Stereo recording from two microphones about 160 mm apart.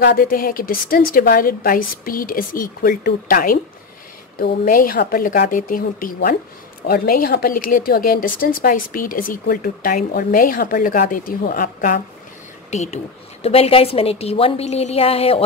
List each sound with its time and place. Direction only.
0.0 s a woman's voice: 65° left (ahead or behind)
12.7 s a woman's voice: 45° left (ahead or behind)